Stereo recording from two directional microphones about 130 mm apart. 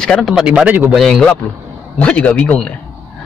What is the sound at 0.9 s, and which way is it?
A man's voice, centre (ahead or behind).